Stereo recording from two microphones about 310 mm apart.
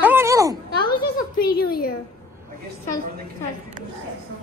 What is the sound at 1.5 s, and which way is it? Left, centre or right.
Speech, left.